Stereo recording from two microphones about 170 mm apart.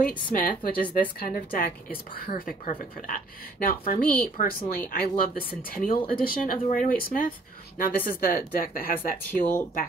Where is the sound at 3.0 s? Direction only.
55° left (ahead or behind).